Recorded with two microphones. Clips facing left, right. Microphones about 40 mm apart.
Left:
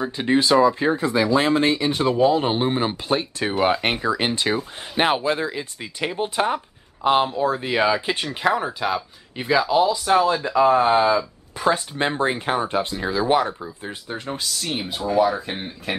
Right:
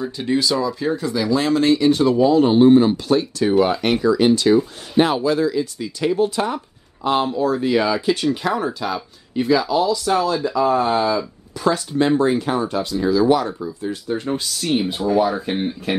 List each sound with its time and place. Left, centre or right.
0.0 s speech: left
14.2 s speech: centre